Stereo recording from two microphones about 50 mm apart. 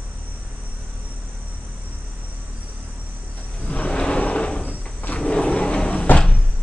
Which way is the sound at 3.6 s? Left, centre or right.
Left.